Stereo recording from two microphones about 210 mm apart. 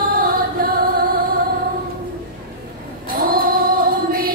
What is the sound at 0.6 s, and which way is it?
Music, 45° right (ahead or behind).